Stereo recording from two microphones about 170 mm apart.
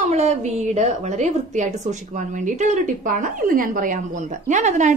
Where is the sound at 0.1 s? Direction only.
40° right (ahead or behind).